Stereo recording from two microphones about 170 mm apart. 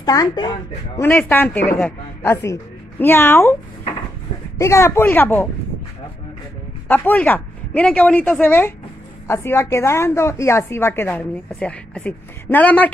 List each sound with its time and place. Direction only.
0.0 s speech: 25° left (ahead or behind)
1.0 s a man's voice: 10° left (ahead or behind)
4.6 s a man's voice: 15° left (ahead or behind)
6.9 s a man's voice: 10° left (ahead or behind)